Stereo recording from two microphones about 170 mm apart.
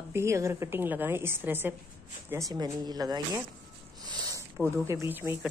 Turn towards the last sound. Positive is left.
turn(degrees=-10)  # may be behind; listen again after turning